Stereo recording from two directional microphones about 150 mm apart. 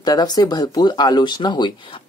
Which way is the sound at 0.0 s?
25° left (ahead or behind).